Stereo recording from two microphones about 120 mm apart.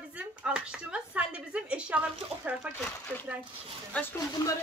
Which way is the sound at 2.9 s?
15° left (ahead or behind).